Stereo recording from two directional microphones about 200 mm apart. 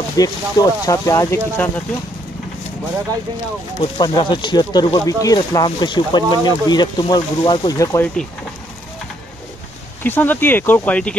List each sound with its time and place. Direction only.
0.2 s speech: 20° left (ahead or behind)
3.8 s speech: 20° left (ahead or behind)
10.0 s speech: 10° left (ahead or behind)